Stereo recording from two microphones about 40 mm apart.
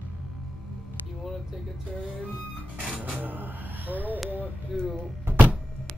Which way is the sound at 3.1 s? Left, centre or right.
Right.